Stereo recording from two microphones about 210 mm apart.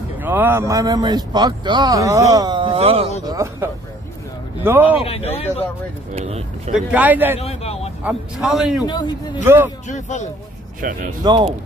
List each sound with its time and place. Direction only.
0.2 s a man's voice: 10° right (ahead or behind); by 3.1 s 30° right (ahead or behind)
3.3 s a man's voice: 15° right (ahead or behind)
5.0 s speech: 30° left (ahead or behind)
6.1 s speech: 30° right (ahead or behind)
6.7 s a man's voice: 5° right (ahead or behind)
7.3 s a man's voice: 30° left (ahead or behind)
8.0 s a man's voice: 5° right (ahead or behind)
8.8 s speech: 20° left (ahead or behind)
9.4 s a man's voice: 10° right (ahead or behind)
9.8 s speech: 35° left (ahead or behind)
10.8 s speech: 40° right (ahead or behind)
11.2 s speech: 20° right (ahead or behind)